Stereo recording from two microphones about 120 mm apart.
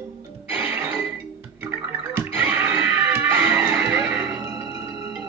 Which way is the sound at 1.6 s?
20° right (ahead or behind).